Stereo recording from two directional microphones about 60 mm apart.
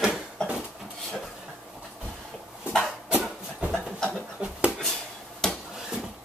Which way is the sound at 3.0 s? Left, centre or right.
Centre.